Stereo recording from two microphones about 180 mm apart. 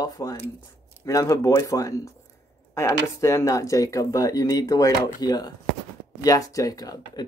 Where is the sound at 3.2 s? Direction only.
20° left (ahead or behind).